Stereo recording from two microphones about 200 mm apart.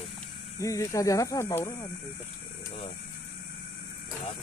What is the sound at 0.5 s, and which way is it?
Speech, 15° left (ahead or behind).